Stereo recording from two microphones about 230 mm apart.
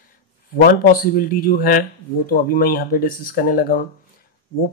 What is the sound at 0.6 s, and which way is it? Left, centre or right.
Speech, left.